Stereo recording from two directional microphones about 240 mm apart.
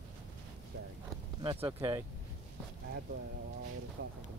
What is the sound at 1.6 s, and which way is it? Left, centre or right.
Speech, centre.